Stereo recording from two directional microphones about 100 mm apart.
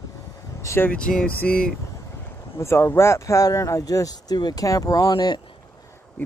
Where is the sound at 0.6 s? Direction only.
30° left (ahead or behind).